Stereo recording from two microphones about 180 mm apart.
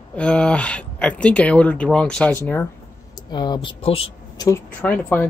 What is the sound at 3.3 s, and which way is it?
Speech, 25° left (ahead or behind).